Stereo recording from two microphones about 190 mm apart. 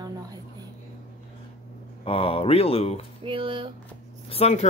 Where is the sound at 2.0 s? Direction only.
30° left (ahead or behind).